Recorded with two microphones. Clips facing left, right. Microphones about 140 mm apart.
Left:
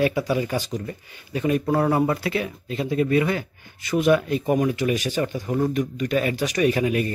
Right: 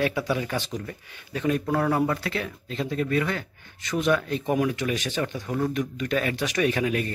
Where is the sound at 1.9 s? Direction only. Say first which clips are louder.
Left 3 dB; 10° left (ahead or behind).